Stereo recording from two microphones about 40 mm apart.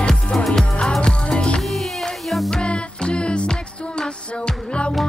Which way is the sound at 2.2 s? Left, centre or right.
Centre.